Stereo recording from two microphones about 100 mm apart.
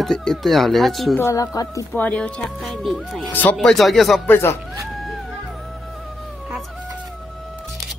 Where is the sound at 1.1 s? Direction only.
30° left (ahead or behind).